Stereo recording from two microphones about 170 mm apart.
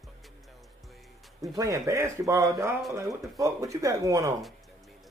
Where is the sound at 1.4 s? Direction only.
20° right (ahead or behind).